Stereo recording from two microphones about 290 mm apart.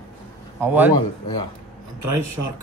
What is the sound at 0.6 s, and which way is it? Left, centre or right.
Speech, centre.